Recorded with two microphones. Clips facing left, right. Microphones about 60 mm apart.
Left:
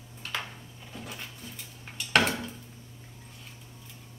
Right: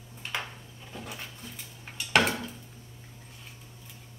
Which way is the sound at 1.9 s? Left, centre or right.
Centre.